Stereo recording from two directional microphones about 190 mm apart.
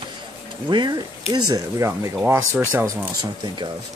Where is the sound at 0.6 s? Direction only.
25° right (ahead or behind).